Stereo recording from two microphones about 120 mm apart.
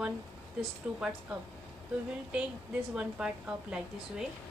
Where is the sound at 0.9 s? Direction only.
5° right (ahead or behind).